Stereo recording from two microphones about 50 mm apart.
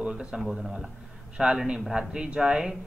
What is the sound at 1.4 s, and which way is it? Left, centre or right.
Speech, centre.